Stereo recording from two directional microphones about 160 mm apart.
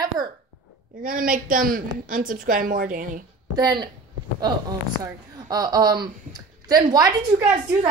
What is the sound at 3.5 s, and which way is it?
Speech, 25° right (ahead or behind).